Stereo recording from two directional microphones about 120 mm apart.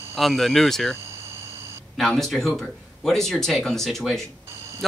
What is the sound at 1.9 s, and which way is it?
Speech, 5° left (ahead or behind).